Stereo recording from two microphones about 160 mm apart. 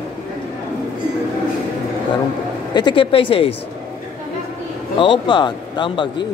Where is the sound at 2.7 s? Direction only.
30° left (ahead or behind).